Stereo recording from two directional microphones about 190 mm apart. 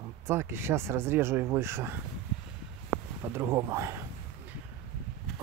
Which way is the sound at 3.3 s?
15° right (ahead or behind).